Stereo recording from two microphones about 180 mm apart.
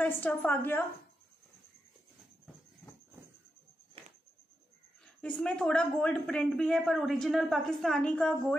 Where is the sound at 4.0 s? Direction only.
35° right (ahead or behind).